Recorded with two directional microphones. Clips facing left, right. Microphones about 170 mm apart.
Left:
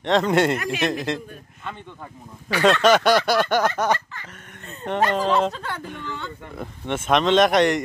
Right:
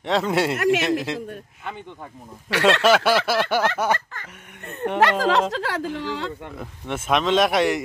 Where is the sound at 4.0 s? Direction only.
45° right (ahead or behind).